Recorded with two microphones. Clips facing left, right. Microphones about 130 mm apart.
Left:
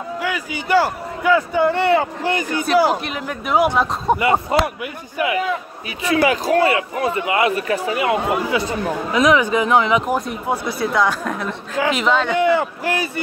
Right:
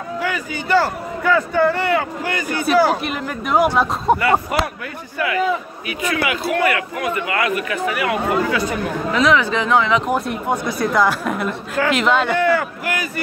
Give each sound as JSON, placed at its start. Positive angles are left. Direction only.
{"t": 0.2, "sound": "a man's voice", "side_deg": 5}
{"t": 1.7, "sound": "a man's voice", "side_deg": 30}
{"t": 2.9, "sound": "speech", "side_deg": 0}
{"t": 4.2, "sound": "a man's voice", "side_deg": 20}
{"t": 5.9, "sound": "a man's voice", "side_deg": 35}
{"t": 10.1, "sound": "speech", "side_deg": 0}
{"t": 12.4, "sound": "a man's voice", "side_deg": 20}